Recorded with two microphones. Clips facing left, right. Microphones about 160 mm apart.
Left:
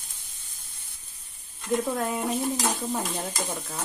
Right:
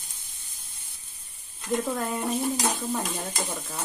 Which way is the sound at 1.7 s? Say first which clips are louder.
Left 1 dB; centre (ahead or behind).